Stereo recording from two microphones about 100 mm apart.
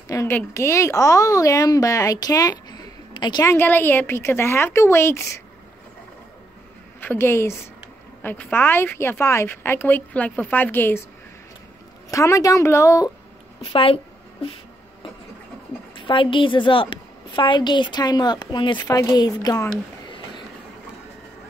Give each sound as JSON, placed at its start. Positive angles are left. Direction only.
{"t": 0.3, "sound": "a woman's voice", "side_deg": 25}
{"t": 3.4, "sound": "a woman's voice", "side_deg": 20}
{"t": 7.0, "sound": "a woman's voice", "side_deg": 20}
{"t": 12.1, "sound": "a woman's voice", "side_deg": 30}
{"t": 13.6, "sound": "a woman's voice", "side_deg": 70}
{"t": 16.0, "sound": "a woman's voice", "side_deg": 60}
{"t": 18.9, "sound": "a woman's voice", "side_deg": 40}